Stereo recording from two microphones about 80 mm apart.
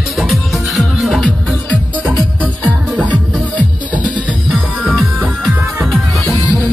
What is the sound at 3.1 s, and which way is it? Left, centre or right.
Music, centre.